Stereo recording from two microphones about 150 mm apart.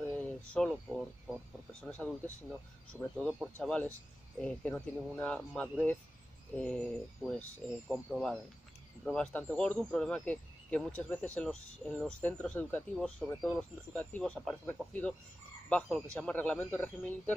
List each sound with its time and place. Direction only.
0.1 s a sound: 5° left (ahead or behind)
0.8 s speech: 5° right (ahead or behind)
1.8 s speech: 5° left (ahead or behind)